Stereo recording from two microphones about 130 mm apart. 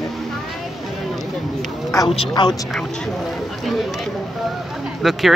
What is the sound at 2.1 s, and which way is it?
Speech, 40° left (ahead or behind).